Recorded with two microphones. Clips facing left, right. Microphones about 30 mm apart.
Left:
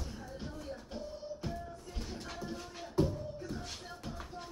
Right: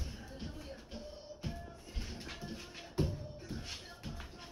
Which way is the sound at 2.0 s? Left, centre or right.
Right.